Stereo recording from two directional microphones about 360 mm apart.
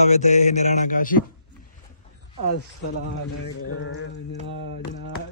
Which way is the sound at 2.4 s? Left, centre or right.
Left.